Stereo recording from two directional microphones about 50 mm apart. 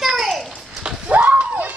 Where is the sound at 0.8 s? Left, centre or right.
Right.